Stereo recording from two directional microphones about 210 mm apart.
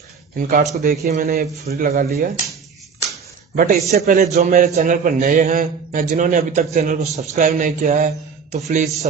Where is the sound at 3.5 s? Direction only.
40° right (ahead or behind).